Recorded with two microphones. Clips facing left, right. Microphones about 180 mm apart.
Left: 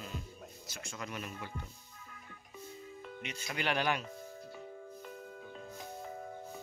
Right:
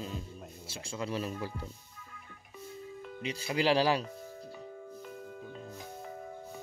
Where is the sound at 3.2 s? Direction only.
30° right (ahead or behind).